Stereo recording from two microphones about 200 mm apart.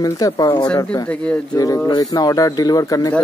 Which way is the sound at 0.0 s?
15° left (ahead or behind).